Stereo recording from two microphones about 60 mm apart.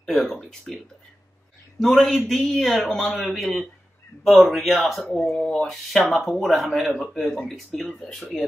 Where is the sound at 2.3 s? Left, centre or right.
Centre.